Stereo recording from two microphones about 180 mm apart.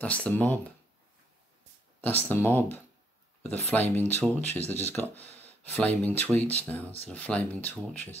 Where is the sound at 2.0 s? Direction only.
10° left (ahead or behind).